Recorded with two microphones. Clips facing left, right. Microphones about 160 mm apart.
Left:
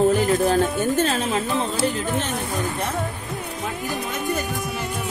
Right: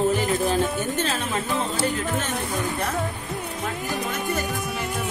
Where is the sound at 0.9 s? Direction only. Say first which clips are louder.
Left 5 dB; 40° left (ahead or behind).